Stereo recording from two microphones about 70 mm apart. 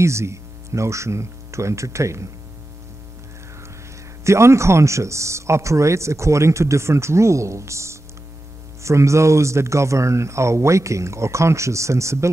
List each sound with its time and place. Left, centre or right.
0.0 s speech: right
4.2 s speech: right